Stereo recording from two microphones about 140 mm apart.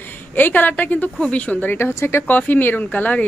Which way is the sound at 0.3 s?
10° left (ahead or behind).